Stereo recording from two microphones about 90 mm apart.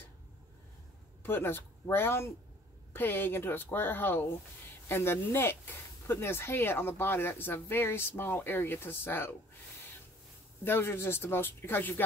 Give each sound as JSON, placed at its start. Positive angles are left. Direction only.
{"t": 1.2, "sound": "speech", "side_deg": 25}
{"t": 10.6, "sound": "speech", "side_deg": 25}